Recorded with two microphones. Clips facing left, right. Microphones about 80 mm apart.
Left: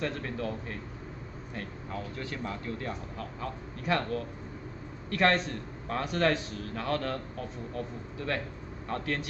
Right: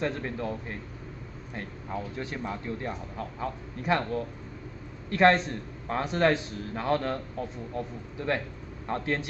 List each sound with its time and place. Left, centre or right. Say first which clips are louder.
0.0 s a man's voice: right 2 dB; right